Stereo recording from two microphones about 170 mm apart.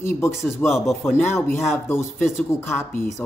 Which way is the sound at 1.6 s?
15° left (ahead or behind).